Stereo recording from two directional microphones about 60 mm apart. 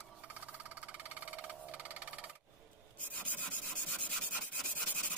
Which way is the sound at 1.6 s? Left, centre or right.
Right.